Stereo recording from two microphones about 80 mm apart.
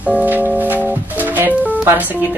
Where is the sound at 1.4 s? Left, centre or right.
Right.